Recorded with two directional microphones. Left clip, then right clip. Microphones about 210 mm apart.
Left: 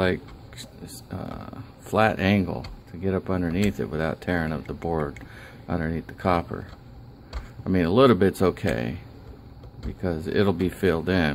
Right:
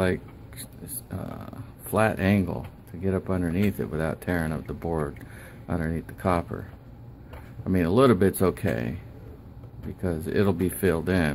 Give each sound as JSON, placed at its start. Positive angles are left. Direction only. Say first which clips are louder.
{"t": 0.0, "sound": "a sound", "louder": "left 2 dB", "side_deg": 5}
{"t": 1.1, "sound": "speech", "louder": "left 2 dB", "side_deg": 0}
{"t": 7.6, "sound": "speech", "louder": "left 2 dB", "side_deg": 5}
{"t": 10.0, "sound": "speech", "louder": "left 2 dB", "side_deg": 5}